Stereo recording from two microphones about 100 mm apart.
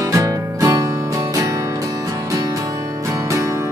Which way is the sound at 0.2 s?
35° right (ahead or behind).